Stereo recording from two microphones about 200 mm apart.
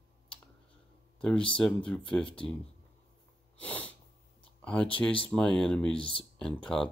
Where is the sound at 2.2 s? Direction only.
25° left (ahead or behind).